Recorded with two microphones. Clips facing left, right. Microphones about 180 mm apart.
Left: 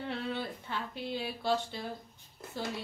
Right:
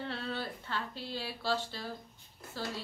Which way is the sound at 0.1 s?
20° left (ahead or behind).